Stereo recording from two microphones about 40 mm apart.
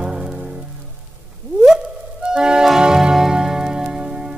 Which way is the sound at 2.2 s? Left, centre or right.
Centre.